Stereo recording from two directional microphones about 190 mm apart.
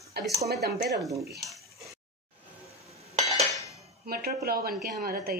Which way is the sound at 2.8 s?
35° right (ahead or behind).